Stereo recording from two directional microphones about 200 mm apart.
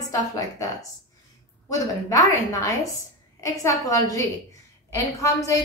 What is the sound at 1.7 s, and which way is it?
A woman's voice, 15° left (ahead or behind).